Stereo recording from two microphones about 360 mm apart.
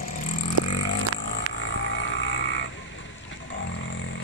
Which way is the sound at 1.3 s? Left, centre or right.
Left.